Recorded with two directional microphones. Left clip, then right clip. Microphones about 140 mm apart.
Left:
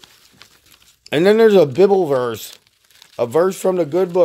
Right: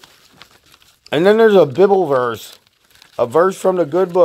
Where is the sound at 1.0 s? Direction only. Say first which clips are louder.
Right 1 dB; 35° left (ahead or behind).